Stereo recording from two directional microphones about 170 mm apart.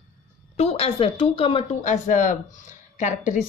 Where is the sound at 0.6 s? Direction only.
40° left (ahead or behind).